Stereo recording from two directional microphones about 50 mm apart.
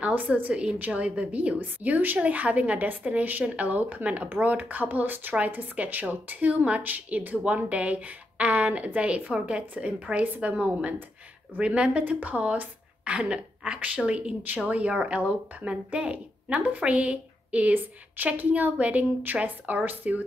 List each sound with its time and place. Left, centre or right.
0.4 s a woman's voice: right
1.8 s a woman's voice: right
12.0 s a woman's voice: right